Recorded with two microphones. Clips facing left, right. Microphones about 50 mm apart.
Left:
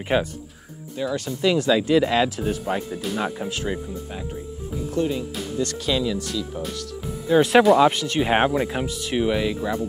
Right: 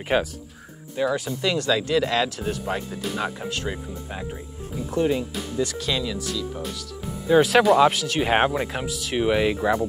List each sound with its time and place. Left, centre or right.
0.1 s speech: centre
1.4 s speech: centre
4.9 s speech: right
5.6 s speech: centre
9.2 s speech: centre